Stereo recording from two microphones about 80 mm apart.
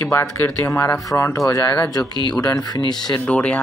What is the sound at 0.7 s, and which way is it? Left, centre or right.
Speech, left.